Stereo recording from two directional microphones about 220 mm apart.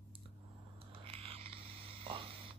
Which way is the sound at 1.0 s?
25° right (ahead or behind).